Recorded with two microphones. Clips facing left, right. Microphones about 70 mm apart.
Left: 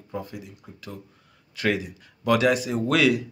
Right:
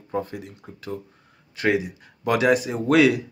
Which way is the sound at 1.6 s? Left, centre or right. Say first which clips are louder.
Right 3 dB; right.